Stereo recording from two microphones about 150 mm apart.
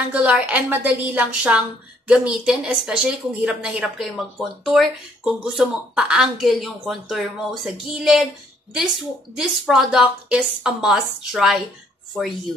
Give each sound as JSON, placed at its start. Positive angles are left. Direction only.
{"t": 0.1, "sound": "a woman's voice", "side_deg": -10}
{"t": 9.4, "sound": "a woman's voice", "side_deg": 0}